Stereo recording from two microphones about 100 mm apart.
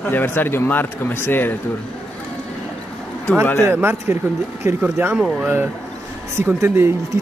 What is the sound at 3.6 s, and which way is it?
Speech, 25° right (ahead or behind).